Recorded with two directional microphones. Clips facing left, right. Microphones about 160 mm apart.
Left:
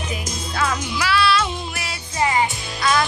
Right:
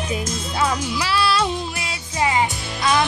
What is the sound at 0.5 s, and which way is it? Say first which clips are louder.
Music: right 1 dB; 30° right (ahead or behind).